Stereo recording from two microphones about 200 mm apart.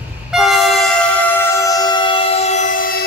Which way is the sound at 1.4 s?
15° left (ahead or behind).